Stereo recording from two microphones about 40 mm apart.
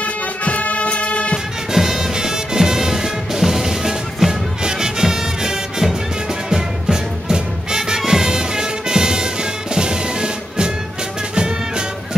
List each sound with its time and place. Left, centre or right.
0.0 s music: left
1.7 s music: centre